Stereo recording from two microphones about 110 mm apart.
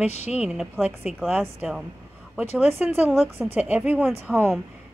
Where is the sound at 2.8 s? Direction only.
15° right (ahead or behind).